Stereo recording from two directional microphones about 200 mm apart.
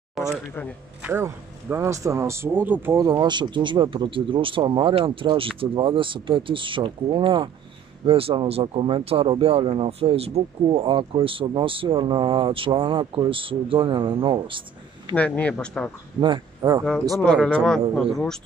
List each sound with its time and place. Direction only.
0.2 s a sound: centre (ahead or behind)
1.0 s a man's voice: 10° right (ahead or behind)
15.1 s speech: 5° left (ahead or behind)
16.2 s a man's voice: 20° right (ahead or behind)
17.2 s a man's voice: 5° left (ahead or behind)